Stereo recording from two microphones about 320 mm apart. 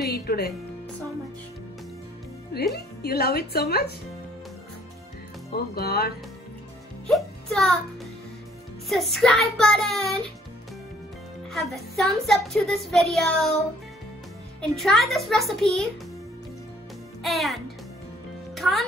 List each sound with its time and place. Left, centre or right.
0.0 s music: left
2.5 s speech: left
5.5 s speech: left
7.1 s music: centre
8.8 s speech: centre
11.5 s speech: centre
14.8 s speech: centre
17.2 s a child's voice: centre
18.5 s music: centre